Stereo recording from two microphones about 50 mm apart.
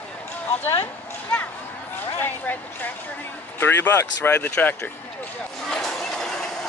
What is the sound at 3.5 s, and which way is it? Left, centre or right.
Speech, left.